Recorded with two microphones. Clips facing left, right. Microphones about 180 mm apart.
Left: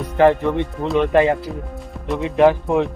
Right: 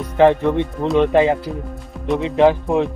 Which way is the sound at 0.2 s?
15° right (ahead or behind).